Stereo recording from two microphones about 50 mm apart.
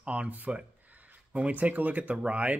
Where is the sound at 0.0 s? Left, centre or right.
Right.